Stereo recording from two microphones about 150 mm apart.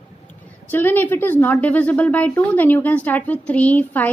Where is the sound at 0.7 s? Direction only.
15° left (ahead or behind).